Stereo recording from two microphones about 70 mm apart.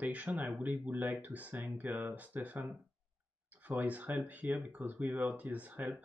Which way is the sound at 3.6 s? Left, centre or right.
Right.